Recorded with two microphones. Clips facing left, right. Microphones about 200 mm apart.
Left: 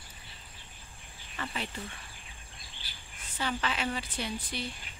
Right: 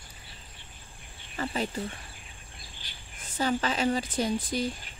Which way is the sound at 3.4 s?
40° right (ahead or behind).